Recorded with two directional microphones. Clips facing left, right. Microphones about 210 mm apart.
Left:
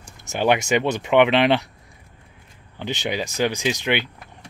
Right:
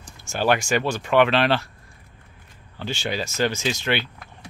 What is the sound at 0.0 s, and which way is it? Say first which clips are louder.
Speech: left 2 dB; 20° left (ahead or behind).